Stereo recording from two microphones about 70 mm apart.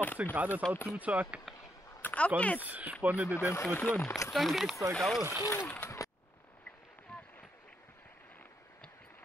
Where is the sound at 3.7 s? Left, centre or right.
Left.